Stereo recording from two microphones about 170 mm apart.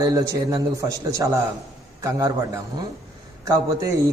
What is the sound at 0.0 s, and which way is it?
A man's voice, 20° right (ahead or behind).